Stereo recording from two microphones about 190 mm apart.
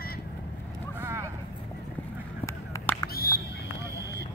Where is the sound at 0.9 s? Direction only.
15° right (ahead or behind).